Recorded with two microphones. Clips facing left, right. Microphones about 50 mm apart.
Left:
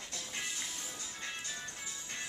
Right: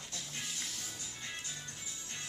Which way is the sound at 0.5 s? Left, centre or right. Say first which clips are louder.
Left 1 dB; centre.